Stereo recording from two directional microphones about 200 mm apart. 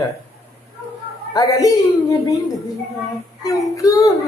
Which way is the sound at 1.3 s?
15° left (ahead or behind).